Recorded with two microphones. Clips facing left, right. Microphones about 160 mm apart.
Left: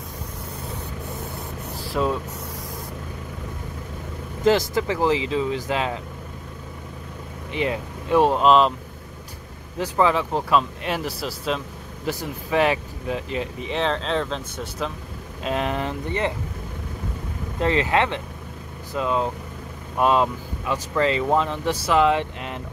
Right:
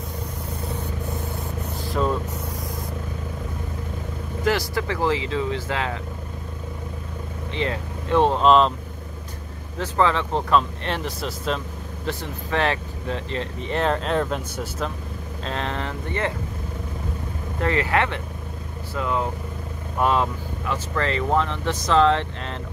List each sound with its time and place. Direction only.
1.9 s speech: centre (ahead or behind)
4.5 s speech: 20° left (ahead or behind)
7.5 s speech: 15° left (ahead or behind)
9.8 s speech: 10° left (ahead or behind)
12.4 s speech: 15° left (ahead or behind); by 14.9 s 5° right (ahead or behind)
15.4 s speech: 15° left (ahead or behind)
17.6 s speech: 20° left (ahead or behind)